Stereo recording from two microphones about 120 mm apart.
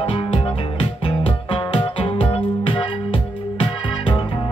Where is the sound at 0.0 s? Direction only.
50° left (ahead or behind).